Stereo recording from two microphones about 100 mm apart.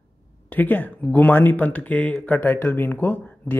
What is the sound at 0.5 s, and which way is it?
Speech, 20° left (ahead or behind).